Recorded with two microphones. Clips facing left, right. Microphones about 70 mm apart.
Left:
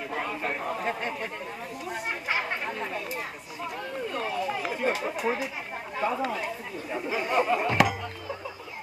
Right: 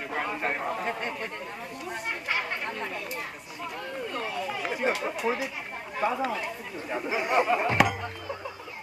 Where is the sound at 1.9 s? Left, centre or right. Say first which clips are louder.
Left 1 dB; centre.